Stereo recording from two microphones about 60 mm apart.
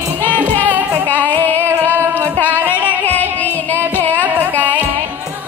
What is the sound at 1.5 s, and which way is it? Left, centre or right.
Music, right.